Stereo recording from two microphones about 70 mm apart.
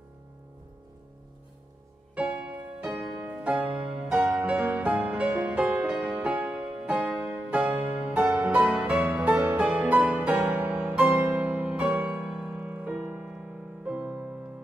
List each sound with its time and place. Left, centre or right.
2.1 s music: centre
4.1 s music: centre
12.6 s music: right
13.3 s music: centre